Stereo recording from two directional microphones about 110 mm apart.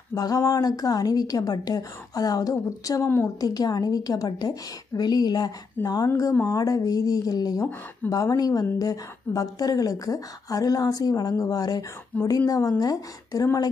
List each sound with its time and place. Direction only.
0.1 s a woman's voice: 30° left (ahead or behind)
5.8 s speech: 15° left (ahead or behind)
6.4 s a woman's voice: 35° left (ahead or behind)